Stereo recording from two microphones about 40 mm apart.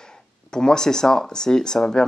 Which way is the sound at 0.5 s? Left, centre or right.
Centre.